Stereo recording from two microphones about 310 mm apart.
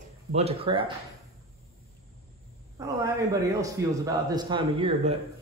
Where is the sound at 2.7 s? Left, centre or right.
Centre.